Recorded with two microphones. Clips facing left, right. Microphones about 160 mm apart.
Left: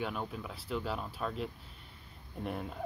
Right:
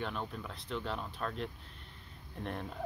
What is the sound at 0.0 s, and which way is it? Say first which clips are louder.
Speech: left 2 dB; 5° left (ahead or behind).